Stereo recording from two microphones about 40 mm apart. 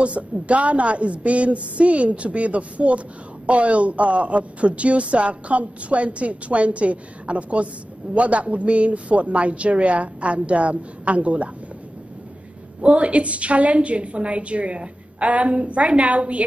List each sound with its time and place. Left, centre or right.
0.0 s speech: right
12.8 s speech: right